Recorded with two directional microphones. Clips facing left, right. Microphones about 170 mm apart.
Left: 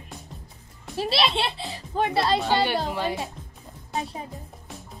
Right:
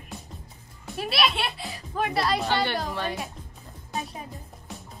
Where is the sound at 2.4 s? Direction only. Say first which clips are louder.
Left 3 dB; 15° left (ahead or behind).